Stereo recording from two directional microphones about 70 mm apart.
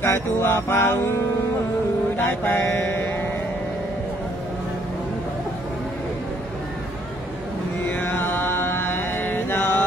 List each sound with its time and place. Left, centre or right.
0.0 s music: left
2.1 s mantra: left
7.9 s mantra: left